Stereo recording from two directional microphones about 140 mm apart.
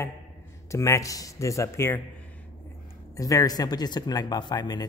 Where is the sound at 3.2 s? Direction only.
25° left (ahead or behind).